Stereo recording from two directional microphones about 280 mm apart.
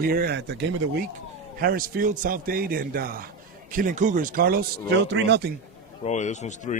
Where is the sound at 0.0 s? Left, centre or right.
Right.